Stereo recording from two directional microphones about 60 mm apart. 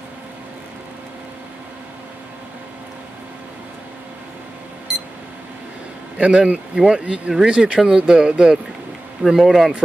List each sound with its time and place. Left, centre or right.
6.1 s speech: centre
9.2 s speech: centre